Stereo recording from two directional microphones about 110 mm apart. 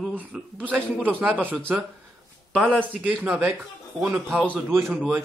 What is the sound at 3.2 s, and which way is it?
A man's voice, 20° right (ahead or behind).